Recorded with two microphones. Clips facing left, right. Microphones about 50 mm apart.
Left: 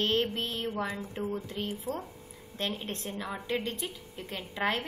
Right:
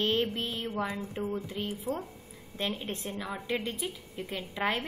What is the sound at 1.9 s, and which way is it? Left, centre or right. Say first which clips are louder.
Speech: right 3 dB; right.